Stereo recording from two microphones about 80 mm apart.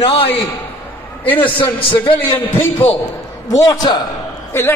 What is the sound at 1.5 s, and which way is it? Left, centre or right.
Speech, left.